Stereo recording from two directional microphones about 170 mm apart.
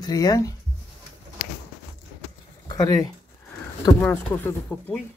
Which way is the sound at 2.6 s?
20° left (ahead or behind).